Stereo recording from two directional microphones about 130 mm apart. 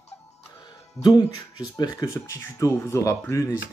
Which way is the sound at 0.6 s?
35° left (ahead or behind).